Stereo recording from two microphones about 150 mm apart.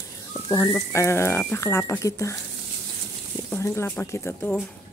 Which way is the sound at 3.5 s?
15° left (ahead or behind).